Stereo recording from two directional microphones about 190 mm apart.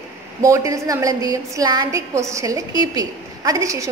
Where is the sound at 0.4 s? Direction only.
15° right (ahead or behind).